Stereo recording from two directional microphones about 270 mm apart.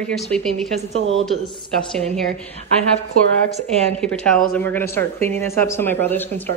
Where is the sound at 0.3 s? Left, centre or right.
Centre.